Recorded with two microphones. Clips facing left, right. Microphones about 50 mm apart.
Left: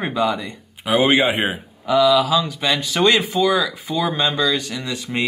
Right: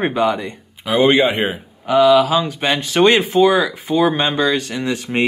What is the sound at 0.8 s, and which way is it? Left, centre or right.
Speech, centre.